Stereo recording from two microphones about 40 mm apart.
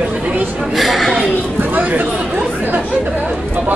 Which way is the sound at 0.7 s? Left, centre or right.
Centre.